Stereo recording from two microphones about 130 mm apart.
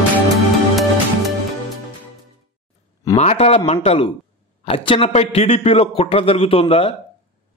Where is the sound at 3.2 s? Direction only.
55° left (ahead or behind).